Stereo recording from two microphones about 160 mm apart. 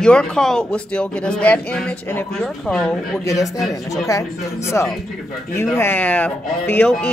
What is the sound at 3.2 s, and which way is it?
Speech, 20° left (ahead or behind).